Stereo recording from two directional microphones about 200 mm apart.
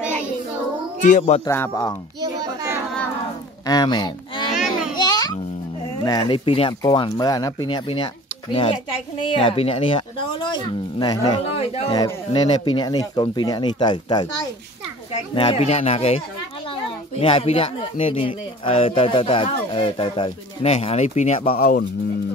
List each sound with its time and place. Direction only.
1.0 s speech: 35° left (ahead or behind)
1.4 s speech: 15° left (ahead or behind)
2.2 s child singing: 15° right (ahead or behind)
3.6 s speech: 20° left (ahead or behind)
4.9 s music: 20° left (ahead or behind)
6.0 s speech: 20° left (ahead or behind)
9.2 s speech: 25° left (ahead or behind)
17.2 s speech: 30° left (ahead or behind)